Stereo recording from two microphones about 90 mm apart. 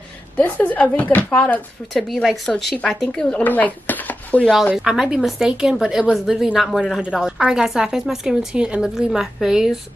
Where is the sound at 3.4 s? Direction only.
20° left (ahead or behind).